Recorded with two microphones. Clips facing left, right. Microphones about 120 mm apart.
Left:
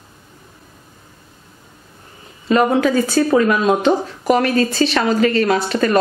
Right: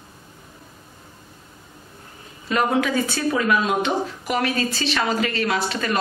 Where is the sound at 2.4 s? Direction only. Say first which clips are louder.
Left 6 dB; 35° left (ahead or behind).